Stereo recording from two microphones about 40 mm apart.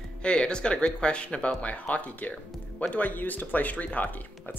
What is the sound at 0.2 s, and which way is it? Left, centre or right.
Speech, left.